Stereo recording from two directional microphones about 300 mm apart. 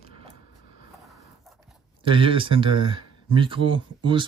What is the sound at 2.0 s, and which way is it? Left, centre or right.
Speech, centre.